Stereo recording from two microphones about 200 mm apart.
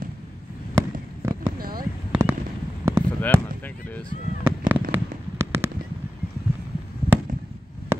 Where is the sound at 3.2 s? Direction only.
10° left (ahead or behind).